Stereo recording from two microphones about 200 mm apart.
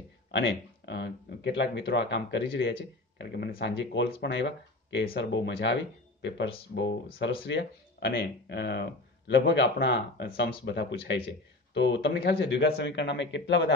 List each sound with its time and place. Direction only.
0.3 s speech: 60° left (ahead or behind)
3.2 s speech: 50° left (ahead or behind)